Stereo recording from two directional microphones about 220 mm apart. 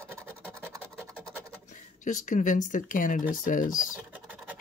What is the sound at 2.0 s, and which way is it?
Speech, 35° left (ahead or behind).